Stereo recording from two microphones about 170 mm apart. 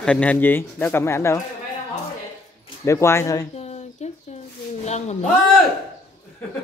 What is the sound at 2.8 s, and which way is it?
Speech, 15° left (ahead or behind).